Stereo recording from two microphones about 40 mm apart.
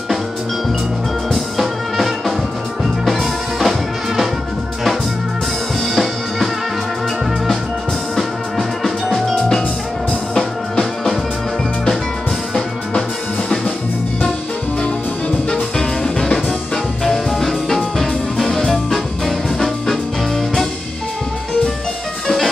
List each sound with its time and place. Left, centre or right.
1.3 s music: centre
8.2 s music: centre
15.5 s music: centre
17.1 s music: centre